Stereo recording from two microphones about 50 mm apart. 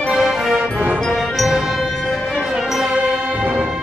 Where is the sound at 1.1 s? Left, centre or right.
Centre.